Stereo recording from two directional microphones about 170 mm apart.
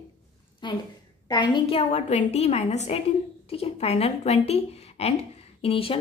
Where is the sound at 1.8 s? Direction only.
40° left (ahead or behind).